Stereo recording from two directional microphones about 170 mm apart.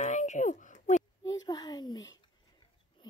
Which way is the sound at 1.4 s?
25° left (ahead or behind).